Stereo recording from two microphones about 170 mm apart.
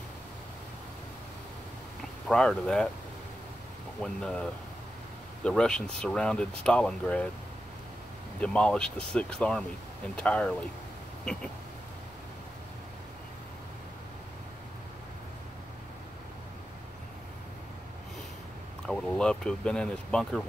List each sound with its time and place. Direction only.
2.2 s speech: centre (ahead or behind)
4.0 s speech: 5° left (ahead or behind)
8.4 s speech: 5° left (ahead or behind)
18.9 s speech: 5° left (ahead or behind)